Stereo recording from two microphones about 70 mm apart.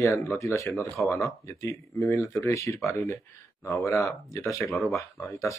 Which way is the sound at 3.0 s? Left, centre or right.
Left.